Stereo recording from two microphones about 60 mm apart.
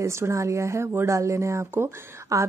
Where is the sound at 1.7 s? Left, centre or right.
Right.